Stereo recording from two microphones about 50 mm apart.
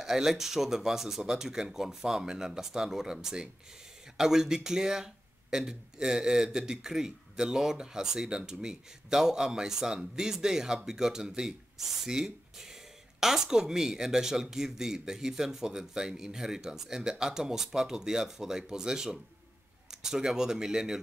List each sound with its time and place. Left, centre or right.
0.0 s speech: centre